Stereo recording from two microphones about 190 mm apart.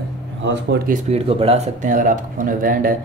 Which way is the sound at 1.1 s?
30° right (ahead or behind).